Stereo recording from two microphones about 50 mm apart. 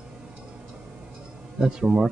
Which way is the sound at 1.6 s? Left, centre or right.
Centre.